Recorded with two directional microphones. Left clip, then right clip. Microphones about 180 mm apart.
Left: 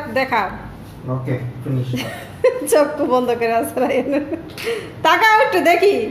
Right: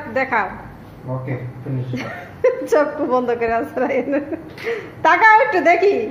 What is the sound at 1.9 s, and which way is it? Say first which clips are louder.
A woman's voice: left 1 dB; 30° left (ahead or behind).